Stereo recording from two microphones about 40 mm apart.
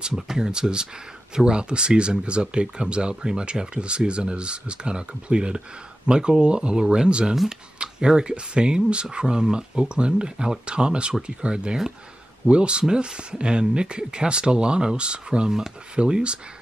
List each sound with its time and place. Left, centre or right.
0.0 s speech: centre